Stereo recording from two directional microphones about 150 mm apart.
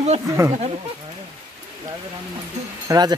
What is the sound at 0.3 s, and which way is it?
Speech, 20° right (ahead or behind).